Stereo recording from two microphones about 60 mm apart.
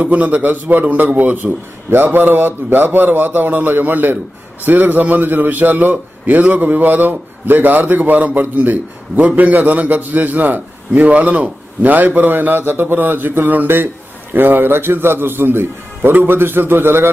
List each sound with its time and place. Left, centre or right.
0.0 s a man's voice: right